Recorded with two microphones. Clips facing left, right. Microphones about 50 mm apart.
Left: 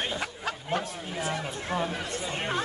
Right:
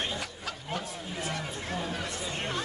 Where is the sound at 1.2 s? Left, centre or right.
Left.